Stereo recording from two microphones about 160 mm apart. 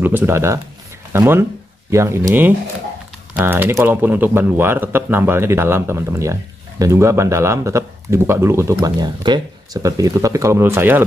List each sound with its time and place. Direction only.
0.0 s speech: 10° right (ahead or behind)